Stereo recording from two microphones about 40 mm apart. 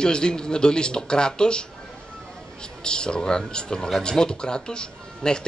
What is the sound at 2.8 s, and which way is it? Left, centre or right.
A man's voice, left.